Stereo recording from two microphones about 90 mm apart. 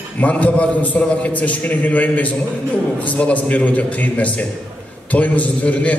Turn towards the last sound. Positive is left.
turn(degrees=15)  # may be behind; listen again after turning